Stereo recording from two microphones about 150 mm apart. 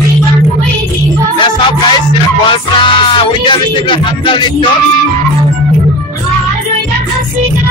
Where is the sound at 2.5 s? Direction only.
35° left (ahead or behind).